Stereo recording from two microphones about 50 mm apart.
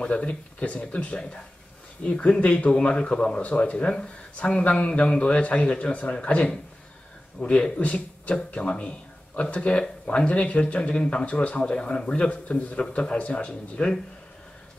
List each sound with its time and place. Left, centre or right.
0.0 s speech: left